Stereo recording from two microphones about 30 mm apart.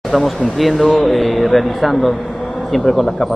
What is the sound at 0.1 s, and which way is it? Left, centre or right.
Speech, centre.